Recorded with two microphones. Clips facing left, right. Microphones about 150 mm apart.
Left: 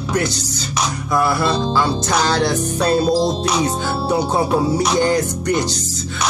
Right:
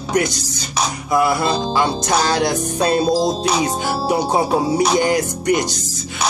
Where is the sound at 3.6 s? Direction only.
15° right (ahead or behind).